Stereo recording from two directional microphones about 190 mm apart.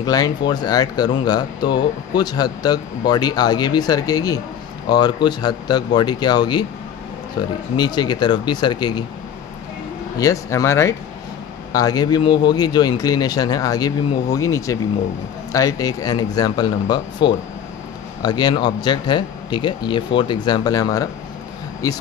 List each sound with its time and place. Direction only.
0.0 s speech: 20° left (ahead or behind)
10.1 s speech: 15° left (ahead or behind)